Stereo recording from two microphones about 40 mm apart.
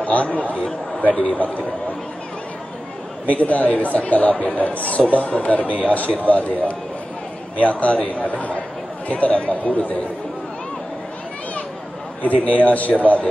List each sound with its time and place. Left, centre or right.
0.0 s speech: left
3.3 s speech: left
12.4 s speech: left